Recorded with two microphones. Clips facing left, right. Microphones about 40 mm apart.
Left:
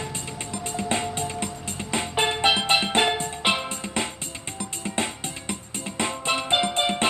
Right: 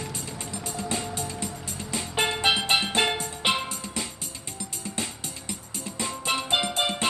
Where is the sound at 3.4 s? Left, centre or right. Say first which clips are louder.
Left 1 dB; centre.